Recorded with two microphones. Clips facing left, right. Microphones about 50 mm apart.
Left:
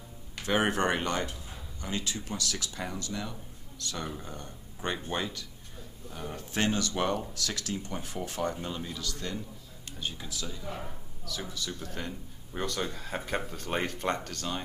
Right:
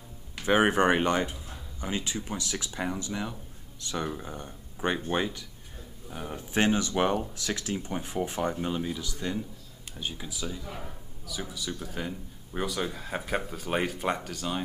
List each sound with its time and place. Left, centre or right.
0.5 s speech: centre
10.6 s speech: centre
11.2 s speech: centre